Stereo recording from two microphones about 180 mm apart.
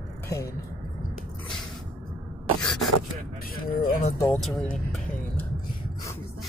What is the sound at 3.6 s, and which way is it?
Speech, 55° left (ahead or behind).